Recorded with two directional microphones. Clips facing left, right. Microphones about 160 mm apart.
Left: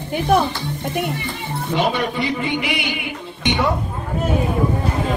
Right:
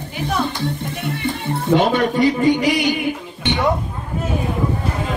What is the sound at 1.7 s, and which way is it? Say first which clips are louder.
A man's voice: right 5 dB; 50° right (ahead or behind).